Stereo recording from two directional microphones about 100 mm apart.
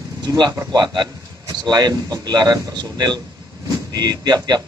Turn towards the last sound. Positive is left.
turn(degrees=-45)  # may be behind; listen again after turning